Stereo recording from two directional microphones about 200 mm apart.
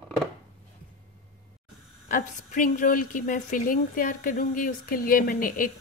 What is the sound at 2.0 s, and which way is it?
A woman's voice, 40° left (ahead or behind).